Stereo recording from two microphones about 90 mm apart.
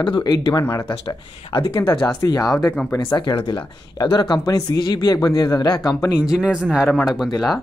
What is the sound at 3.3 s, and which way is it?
Speech, 65° left (ahead or behind).